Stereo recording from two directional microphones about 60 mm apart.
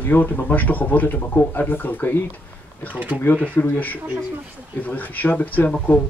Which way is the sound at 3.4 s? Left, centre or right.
Left.